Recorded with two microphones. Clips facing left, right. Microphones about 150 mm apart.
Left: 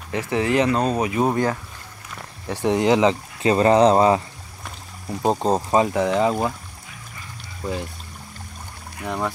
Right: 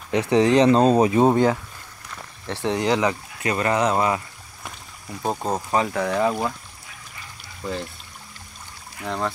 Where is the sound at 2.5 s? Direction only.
15° left (ahead or behind).